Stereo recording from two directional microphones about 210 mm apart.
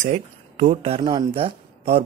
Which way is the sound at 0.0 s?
35° right (ahead or behind).